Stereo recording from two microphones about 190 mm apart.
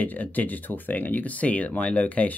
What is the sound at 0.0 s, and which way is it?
Speech, 10° left (ahead or behind).